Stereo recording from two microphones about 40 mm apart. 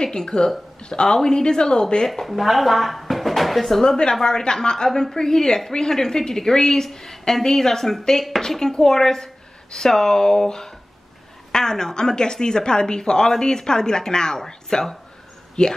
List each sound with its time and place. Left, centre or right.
0.0 s speech: centre
2.0 s speech: centre
3.8 s a woman's voice: centre